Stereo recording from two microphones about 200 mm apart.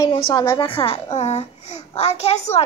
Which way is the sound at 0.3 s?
20° left (ahead or behind).